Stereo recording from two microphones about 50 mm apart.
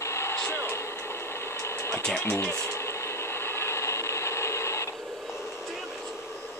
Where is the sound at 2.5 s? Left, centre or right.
Left.